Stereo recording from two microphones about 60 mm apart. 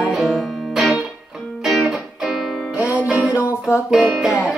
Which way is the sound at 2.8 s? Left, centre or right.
Left.